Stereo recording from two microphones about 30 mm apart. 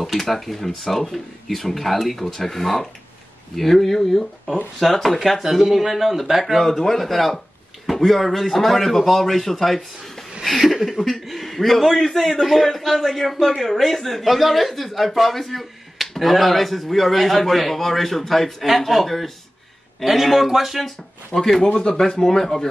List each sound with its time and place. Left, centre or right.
0.0 s speech: centre
6.6 s speech: centre
21.3 s speech: left
21.7 s speech: left
22.2 s speech: centre